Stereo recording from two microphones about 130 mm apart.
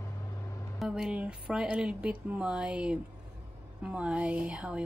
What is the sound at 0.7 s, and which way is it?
Speech, 5° right (ahead or behind).